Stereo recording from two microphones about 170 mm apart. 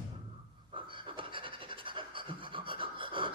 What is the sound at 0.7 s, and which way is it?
Pant, 30° right (ahead or behind).